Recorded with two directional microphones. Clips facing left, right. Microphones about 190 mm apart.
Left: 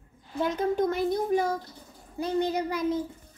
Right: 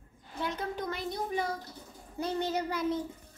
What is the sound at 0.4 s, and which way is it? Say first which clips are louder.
Speech: left 9 dB; 50° left (ahead or behind).